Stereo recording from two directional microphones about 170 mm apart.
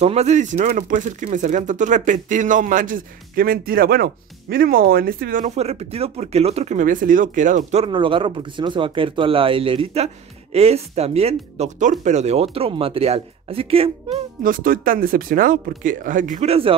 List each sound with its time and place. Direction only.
0.0 s speech: 40° right (ahead or behind); by 5.5 s 55° right (ahead or behind)
5.6 s speech: 40° right (ahead or behind)
7.8 s speech: 30° right (ahead or behind)
14.4 s speech: 55° right (ahead or behind); by 16.7 s 35° right (ahead or behind)